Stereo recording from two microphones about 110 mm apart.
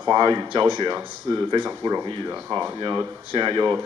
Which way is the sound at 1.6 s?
30° right (ahead or behind).